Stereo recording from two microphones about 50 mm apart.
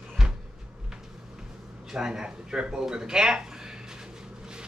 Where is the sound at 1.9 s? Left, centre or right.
Centre.